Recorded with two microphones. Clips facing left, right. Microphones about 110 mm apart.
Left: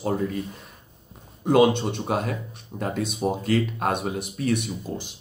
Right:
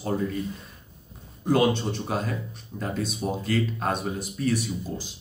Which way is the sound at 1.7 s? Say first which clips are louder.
Left 2 dB; 60° left (ahead or behind).